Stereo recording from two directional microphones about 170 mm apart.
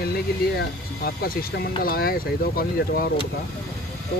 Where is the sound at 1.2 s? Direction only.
65° left (ahead or behind).